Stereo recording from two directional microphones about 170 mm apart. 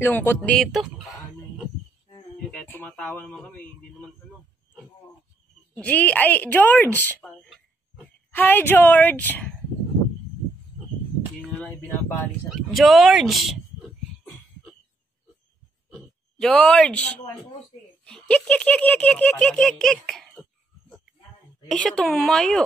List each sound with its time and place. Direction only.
0.0 s a woman's voice: 10° left (ahead or behind)
0.4 s speech: centre (ahead or behind)
2.5 s a woman's voice: 10° left (ahead or behind)
5.8 s a woman's voice: 10° left (ahead or behind)
7.4 s a sound: 5° right (ahead or behind)
8.3 s a woman's voice: 10° left (ahead or behind)
11.4 s speech: 5° left (ahead or behind)
15.9 s a sound: 5° left (ahead or behind)
18.0 s speech: 5° left (ahead or behind)
21.6 s speech: 5° left (ahead or behind)